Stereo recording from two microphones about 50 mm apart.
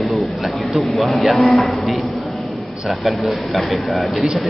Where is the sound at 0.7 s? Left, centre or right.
Centre.